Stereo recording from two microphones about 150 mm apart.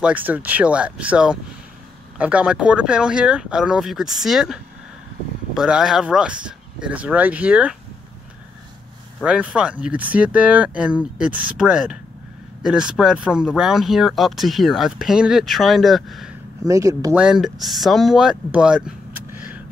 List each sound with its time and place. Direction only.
0.0 s speech: 10° right (ahead or behind)
9.2 s speech: 5° right (ahead or behind)
16.6 s speech: 20° right (ahead or behind)
17.1 s speech: 5° right (ahead or behind)